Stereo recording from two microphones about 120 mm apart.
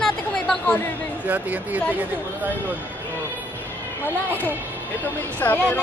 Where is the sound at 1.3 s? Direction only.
15° right (ahead or behind).